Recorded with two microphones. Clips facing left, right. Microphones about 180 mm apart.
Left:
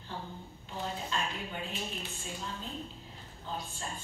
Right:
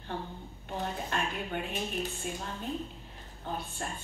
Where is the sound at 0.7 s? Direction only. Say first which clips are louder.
Right 3 dB; 60° right (ahead or behind).